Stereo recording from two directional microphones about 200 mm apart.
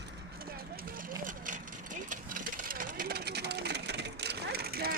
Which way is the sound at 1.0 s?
40° right (ahead or behind).